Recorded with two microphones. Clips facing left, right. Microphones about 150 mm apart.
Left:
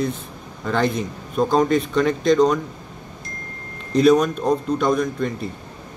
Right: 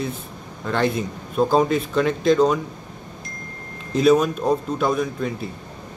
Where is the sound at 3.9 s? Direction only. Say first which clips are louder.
Left 1 dB; 5° right (ahead or behind).